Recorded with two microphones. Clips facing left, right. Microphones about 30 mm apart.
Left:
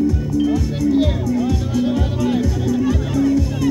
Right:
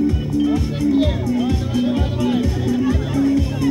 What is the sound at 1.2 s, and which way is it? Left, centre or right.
Music, right.